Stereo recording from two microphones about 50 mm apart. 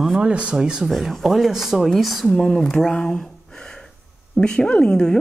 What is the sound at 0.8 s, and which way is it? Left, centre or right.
A woman's voice, centre.